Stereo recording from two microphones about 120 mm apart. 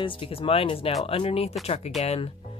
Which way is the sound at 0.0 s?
45° left (ahead or behind).